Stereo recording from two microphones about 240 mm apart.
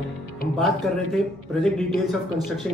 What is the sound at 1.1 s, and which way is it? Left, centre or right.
Speech, centre.